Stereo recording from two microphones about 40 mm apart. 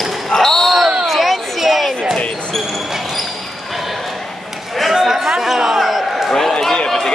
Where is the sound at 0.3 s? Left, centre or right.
Centre.